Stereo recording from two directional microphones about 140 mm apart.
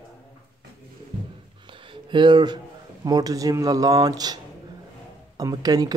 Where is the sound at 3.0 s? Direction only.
25° right (ahead or behind).